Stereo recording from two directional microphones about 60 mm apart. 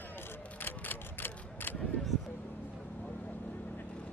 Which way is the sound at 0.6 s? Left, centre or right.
Left.